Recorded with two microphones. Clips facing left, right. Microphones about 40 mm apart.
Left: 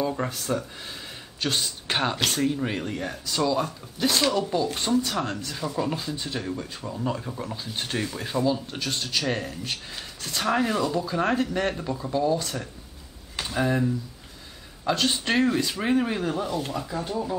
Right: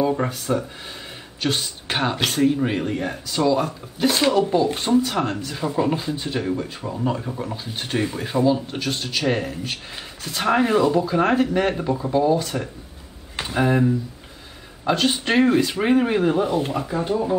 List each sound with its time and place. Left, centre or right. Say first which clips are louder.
0.0 s speech: right 6 dB; centre